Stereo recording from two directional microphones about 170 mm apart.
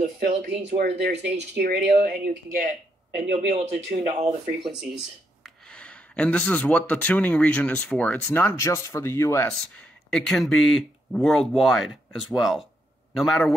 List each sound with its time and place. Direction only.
0.7 s speech: 75° right (ahead or behind)
1.6 s speech: 60° right (ahead or behind)
3.2 s speech: 35° right (ahead or behind)
5.4 s speech: 5° left (ahead or behind)
9.5 s speech: 5° left (ahead or behind)